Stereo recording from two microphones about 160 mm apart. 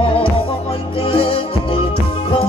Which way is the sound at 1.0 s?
35° left (ahead or behind).